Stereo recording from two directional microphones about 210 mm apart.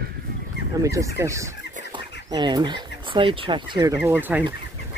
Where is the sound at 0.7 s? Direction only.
15° right (ahead or behind).